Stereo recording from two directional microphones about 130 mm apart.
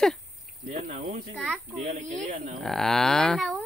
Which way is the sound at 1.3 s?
5° left (ahead or behind).